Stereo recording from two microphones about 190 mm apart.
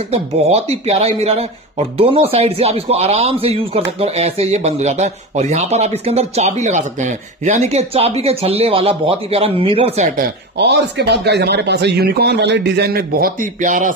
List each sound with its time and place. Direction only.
0.1 s speech: 30° right (ahead or behind)
10.1 s speech: 60° right (ahead or behind); by 13.9 s 45° right (ahead or behind)